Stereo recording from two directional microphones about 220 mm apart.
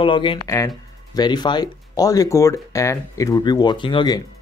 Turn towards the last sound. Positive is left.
turn(degrees=20)  # may be behind; listen again after turning